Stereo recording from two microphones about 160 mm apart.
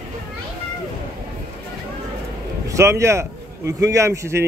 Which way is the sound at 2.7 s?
20° right (ahead or behind).